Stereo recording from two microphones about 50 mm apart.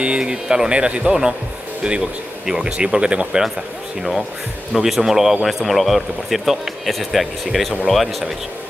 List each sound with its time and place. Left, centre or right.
0.0 s speech: centre
4.7 s speech: centre